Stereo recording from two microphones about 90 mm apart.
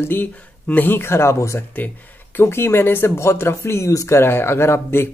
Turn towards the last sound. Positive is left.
turn(degrees=25)  # may be behind; listen again after turning